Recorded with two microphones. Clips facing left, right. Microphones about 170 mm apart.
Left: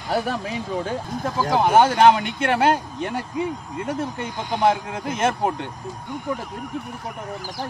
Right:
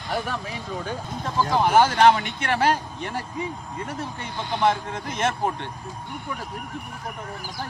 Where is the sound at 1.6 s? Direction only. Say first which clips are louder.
Left 2 dB; 25° left (ahead or behind).